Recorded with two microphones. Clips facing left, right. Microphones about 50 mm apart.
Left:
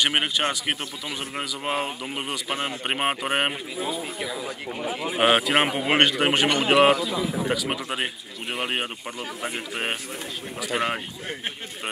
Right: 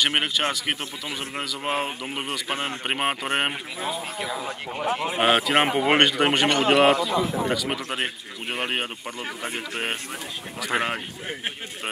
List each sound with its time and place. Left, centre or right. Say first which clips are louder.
0.0 s speech: even; centre
4.8 s speech: right 4 dB; right
5.1 s speech: left 1 dB; centre
10.7 s speech: right 1 dB; centre